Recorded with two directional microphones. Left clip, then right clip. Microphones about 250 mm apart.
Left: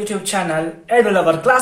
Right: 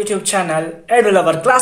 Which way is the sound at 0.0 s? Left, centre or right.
Right.